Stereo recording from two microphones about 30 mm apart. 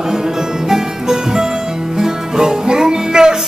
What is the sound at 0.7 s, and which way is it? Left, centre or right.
Music, centre.